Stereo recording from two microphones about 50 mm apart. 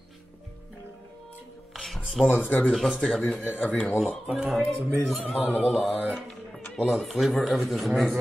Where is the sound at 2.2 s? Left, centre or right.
Left.